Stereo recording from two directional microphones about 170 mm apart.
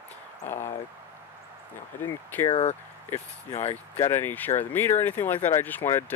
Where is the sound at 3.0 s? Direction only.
15° left (ahead or behind).